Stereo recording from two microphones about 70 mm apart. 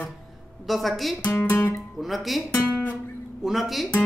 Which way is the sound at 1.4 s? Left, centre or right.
Left.